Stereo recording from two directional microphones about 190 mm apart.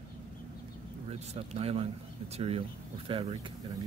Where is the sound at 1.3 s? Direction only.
30° right (ahead or behind).